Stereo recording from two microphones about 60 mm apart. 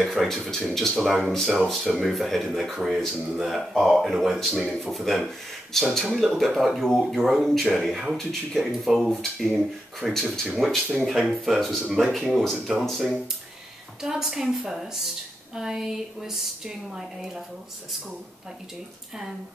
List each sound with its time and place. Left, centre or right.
0.0 s speech: centre
9.1 s speech: centre
14.0 s speech: centre